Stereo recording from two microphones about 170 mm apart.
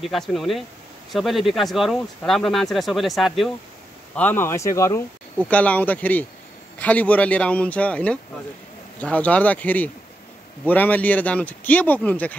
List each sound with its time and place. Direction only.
0.0 s speech: centre (ahead or behind)
4.1 s speech: 10° left (ahead or behind)